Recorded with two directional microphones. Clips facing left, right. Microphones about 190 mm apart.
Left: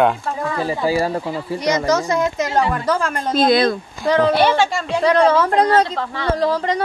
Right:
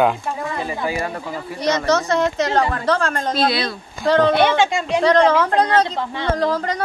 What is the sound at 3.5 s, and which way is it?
Speech, 45° left (ahead or behind).